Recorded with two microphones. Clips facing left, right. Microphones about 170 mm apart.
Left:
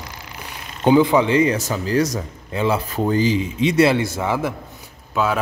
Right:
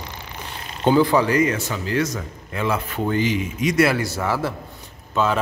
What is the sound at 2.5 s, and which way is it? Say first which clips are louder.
Speech: left 3 dB; 30° left (ahead or behind).